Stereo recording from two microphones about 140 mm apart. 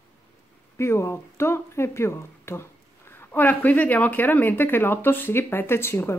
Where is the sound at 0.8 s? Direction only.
20° left (ahead or behind).